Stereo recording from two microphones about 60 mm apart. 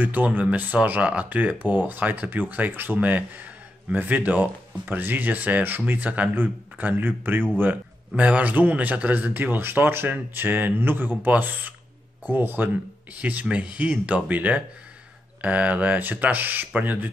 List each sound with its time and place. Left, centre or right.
0.0 s a man's voice: right
13.1 s a man's voice: right